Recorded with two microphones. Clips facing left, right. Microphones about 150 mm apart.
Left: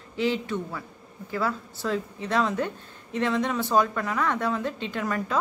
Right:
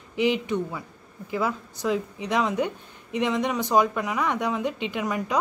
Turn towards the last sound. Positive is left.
turn(degrees=-15)  # may be behind; listen again after turning